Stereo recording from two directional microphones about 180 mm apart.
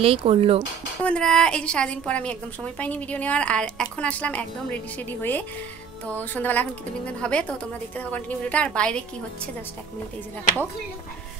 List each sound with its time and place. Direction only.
0.0 s speech: 30° right (ahead or behind)
1.0 s a woman's voice: 5° left (ahead or behind)